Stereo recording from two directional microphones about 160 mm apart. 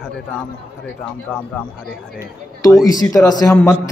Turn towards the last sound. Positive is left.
turn(degrees=20)  # may be behind; listen again after turning